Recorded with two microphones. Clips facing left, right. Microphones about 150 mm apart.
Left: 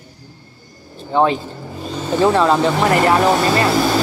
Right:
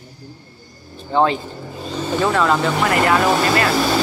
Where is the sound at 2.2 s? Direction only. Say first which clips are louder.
Left 4 dB; 30° left (ahead or behind).